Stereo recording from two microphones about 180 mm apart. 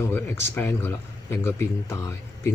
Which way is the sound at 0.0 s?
10° left (ahead or behind).